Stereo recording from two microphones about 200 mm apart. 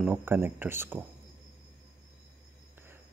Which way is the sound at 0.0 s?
5° right (ahead or behind).